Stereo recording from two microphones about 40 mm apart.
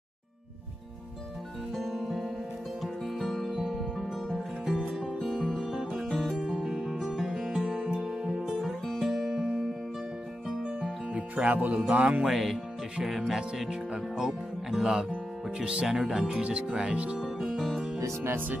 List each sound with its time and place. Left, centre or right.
1.8 s music: centre
8.5 s music: centre
11.1 s music: right
11.5 s speech: right
12.3 s speech: centre
13.2 s speech: right
15.6 s speech: right
15.9 s speech: centre
16.4 s speech: right
17.2 s music: centre